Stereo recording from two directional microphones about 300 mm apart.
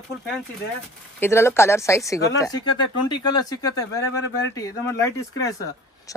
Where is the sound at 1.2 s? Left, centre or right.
Centre.